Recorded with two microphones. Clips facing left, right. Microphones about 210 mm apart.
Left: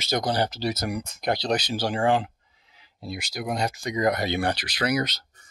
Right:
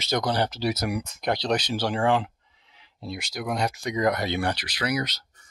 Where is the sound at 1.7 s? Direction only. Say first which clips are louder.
Left 1 dB; 35° left (ahead or behind).